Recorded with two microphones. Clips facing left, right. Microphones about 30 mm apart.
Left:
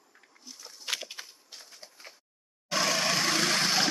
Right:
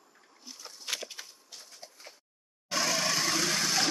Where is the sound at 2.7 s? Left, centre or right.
Left.